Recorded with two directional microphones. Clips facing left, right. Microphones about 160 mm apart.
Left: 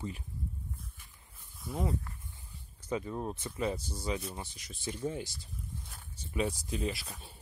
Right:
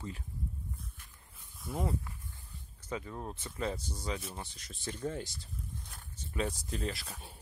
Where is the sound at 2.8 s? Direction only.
20° left (ahead or behind).